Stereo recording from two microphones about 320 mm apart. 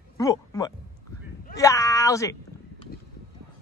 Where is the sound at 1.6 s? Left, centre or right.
Centre.